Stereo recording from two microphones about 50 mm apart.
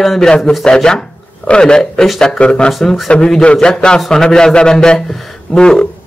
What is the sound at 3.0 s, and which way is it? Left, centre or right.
A man's voice, centre.